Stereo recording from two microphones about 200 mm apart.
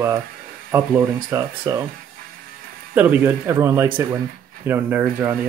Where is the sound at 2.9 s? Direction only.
10° right (ahead or behind).